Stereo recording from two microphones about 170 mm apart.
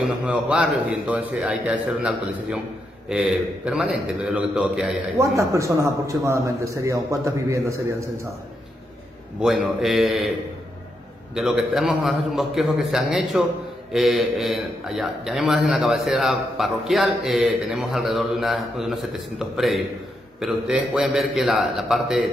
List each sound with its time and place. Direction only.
0.0 s a man's voice: 5° right (ahead or behind)
5.1 s a man's voice: 20° right (ahead or behind)
9.4 s a man's voice: centre (ahead or behind)
11.3 s a man's voice: 5° right (ahead or behind)